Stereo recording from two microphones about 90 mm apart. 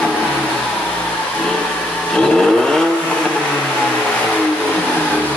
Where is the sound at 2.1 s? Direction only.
5° left (ahead or behind).